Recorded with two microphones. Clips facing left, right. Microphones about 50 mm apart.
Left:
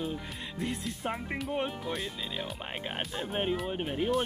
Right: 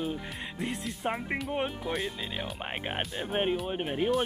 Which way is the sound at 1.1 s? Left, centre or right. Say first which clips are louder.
Right 3 dB; centre.